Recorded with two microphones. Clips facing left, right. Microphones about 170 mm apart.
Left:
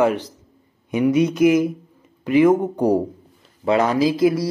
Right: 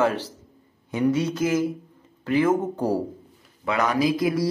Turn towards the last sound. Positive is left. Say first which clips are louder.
# left 4 dB
turn(degrees=25)  # may be behind; listen again after turning